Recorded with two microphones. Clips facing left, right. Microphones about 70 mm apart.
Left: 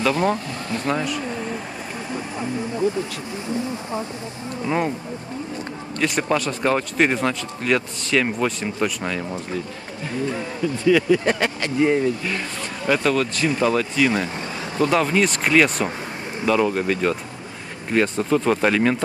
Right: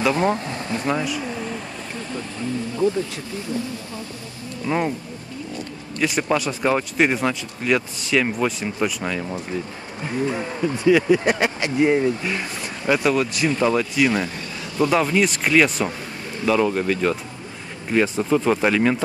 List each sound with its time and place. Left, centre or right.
0.1 s speech: right
0.7 s speech: centre
4.6 s speech: centre
5.9 s speech: centre
10.9 s speech: centre
13.5 s speech: centre